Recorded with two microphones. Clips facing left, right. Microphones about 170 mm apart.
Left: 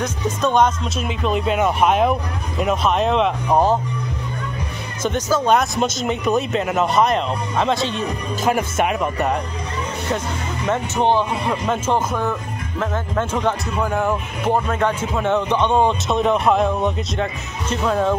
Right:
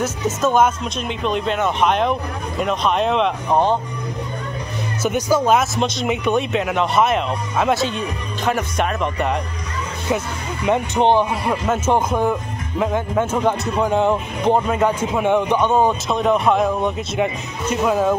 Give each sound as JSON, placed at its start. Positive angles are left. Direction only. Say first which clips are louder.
{"t": 0.0, "sound": "speech", "louder": "right 1 dB", "side_deg": -5}
{"t": 5.0, "sound": "speech", "louder": "right 1 dB", "side_deg": -10}
{"t": 8.5, "sound": "speech", "louder": "left 1 dB", "side_deg": 10}
{"t": 10.0, "sound": "speech", "louder": "right 4 dB", "side_deg": -15}